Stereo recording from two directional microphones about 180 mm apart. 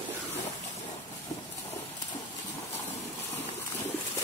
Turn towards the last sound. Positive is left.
turn(degrees=10)  # may be behind; listen again after turning